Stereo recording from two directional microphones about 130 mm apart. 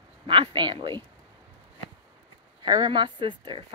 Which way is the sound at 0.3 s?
40° right (ahead or behind).